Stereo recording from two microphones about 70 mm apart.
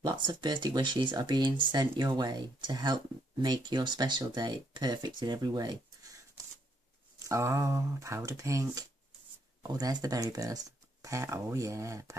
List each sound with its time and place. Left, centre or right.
0.0 s speech: right
7.2 s speech: right
9.6 s speech: right